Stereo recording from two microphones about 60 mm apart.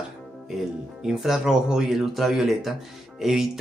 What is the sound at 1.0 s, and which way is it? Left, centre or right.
Speech, centre.